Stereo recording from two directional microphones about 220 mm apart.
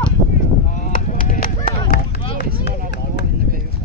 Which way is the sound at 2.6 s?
50° left (ahead or behind).